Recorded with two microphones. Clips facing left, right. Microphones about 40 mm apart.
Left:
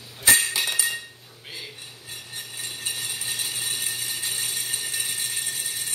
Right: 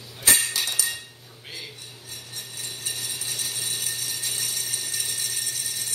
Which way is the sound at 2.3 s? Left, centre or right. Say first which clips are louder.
Left 2 dB; left.